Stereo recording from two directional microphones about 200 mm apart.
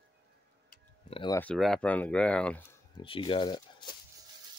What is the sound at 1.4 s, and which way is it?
Speech, 5° left (ahead or behind).